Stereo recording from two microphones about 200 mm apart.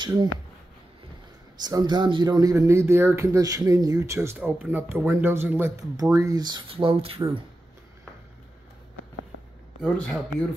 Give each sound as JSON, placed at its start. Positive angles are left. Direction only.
{"t": 0.0, "sound": "speech", "side_deg": -20}
{"t": 1.6, "sound": "speech", "side_deg": -20}
{"t": 9.8, "sound": "speech", "side_deg": 5}